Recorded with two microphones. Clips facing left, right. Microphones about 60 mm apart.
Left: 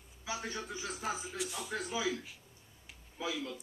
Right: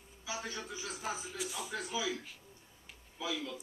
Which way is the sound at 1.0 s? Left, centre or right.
Centre.